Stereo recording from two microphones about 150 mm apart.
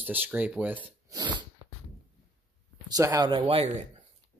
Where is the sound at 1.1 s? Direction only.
30° right (ahead or behind).